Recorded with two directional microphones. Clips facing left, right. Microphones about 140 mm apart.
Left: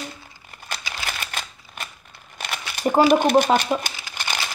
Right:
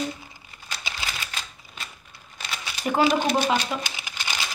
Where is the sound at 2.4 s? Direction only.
55° left (ahead or behind).